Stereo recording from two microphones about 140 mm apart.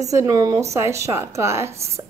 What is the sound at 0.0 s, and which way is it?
A woman's voice, 25° right (ahead or behind).